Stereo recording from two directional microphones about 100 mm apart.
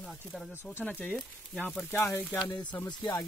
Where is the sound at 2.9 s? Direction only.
45° left (ahead or behind).